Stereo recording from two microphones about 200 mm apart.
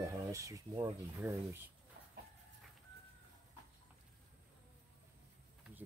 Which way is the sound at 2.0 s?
50° right (ahead or behind).